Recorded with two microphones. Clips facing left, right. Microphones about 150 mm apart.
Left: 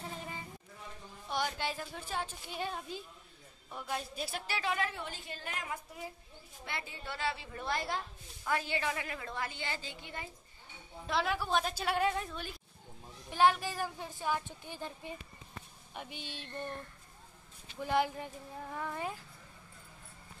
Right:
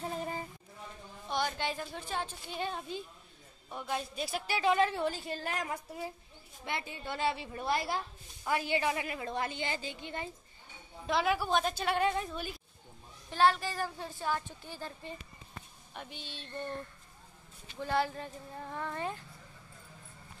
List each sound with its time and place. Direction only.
0.1 s a sound: 40° right (ahead or behind)
1.3 s a woman's voice: 5° left (ahead or behind)
4.5 s a woman's voice: 20° right (ahead or behind); by 6.0 s 40° right (ahead or behind)
6.6 s a woman's voice: 20° right (ahead or behind)
11.1 s a woman's voice: centre (ahead or behind)
13.3 s a woman's voice: 15° left (ahead or behind)
17.7 s a woman's voice: 15° left (ahead or behind)